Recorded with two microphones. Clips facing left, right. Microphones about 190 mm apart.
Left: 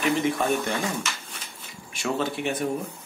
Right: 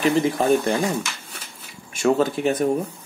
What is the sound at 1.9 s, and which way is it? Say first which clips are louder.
Speech: right 8 dB; 45° right (ahead or behind).